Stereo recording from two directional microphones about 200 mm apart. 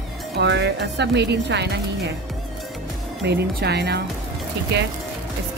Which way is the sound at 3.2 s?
55° right (ahead or behind).